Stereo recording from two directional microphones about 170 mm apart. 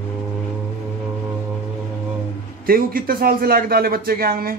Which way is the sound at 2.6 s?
55° right (ahead or behind).